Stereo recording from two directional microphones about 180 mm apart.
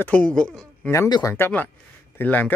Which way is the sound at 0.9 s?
20° left (ahead or behind).